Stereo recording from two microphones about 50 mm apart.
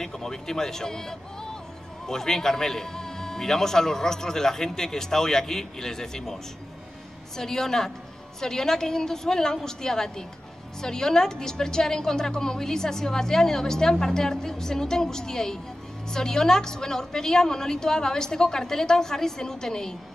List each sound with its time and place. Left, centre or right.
0.0 s a woman's voice: centre